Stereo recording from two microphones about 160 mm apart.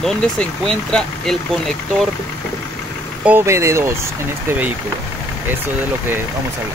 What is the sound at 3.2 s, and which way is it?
Speech, 15° right (ahead or behind).